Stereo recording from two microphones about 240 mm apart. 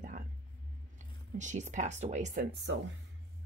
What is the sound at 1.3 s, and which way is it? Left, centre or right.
Speech, right.